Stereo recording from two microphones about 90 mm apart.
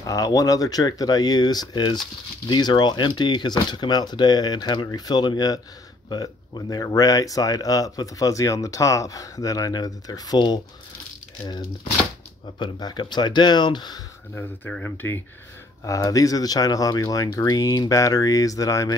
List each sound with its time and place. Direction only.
0.0 s speech: 45° left (ahead or behind)
12.5 s speech: 55° left (ahead or behind)
15.0 s speech: 20° left (ahead or behind)
15.8 s speech: 40° left (ahead or behind)